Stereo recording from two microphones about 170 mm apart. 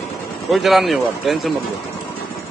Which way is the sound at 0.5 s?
Centre (ahead or behind).